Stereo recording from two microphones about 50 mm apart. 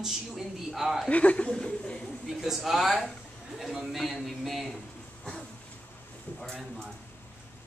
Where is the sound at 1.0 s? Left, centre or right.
Left.